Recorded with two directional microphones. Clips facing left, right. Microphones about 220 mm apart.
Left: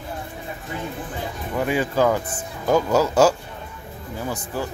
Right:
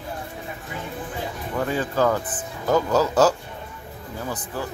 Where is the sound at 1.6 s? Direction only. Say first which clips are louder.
Left 2 dB; 10° left (ahead or behind).